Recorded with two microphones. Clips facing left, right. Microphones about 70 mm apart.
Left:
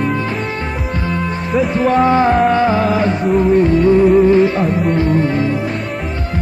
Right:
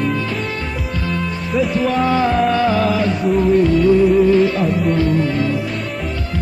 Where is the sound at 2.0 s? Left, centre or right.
Left.